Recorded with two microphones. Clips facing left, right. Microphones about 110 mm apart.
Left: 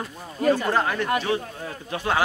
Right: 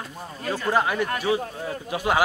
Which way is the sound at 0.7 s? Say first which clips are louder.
Right 1 dB; 10° right (ahead or behind).